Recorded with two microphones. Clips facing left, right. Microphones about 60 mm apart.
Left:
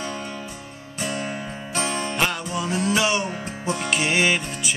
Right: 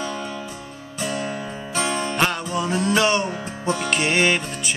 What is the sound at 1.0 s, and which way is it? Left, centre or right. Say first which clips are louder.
Music: right 2 dB; centre.